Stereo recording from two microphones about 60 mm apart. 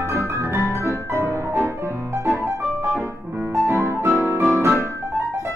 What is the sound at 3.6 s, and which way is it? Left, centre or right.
Music, right.